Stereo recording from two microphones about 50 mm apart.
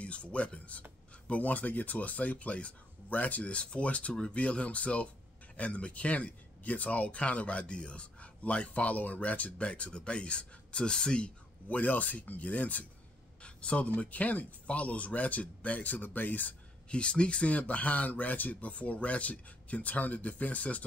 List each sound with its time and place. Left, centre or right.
0.0 s speech: left
13.4 s a sound: left
13.9 s speech: left
16.9 s speech: left